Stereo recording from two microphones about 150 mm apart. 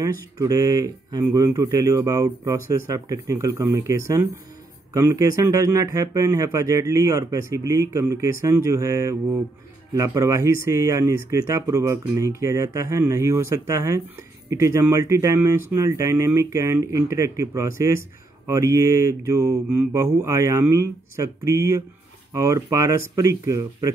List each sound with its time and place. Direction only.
0.4 s speech: 25° right (ahead or behind)